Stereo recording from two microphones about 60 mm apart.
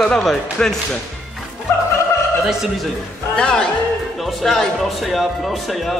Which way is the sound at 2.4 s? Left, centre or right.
Centre.